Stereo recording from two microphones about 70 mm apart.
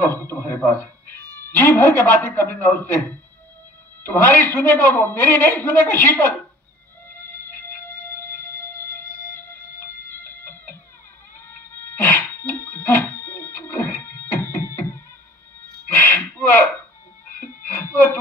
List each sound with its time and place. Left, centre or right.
0.0 s a man's voice: left
4.0 s a man's voice: left
7.2 s music: left
11.3 s cat: left
12.4 s a sound: left
17.4 s music: left